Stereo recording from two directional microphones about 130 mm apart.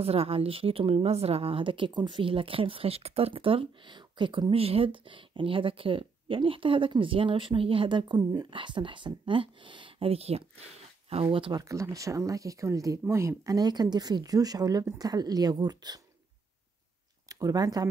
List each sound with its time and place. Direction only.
0.0 s speech: 50° right (ahead or behind)
11.7 s speech: 25° right (ahead or behind)
17.3 s speech: 25° right (ahead or behind)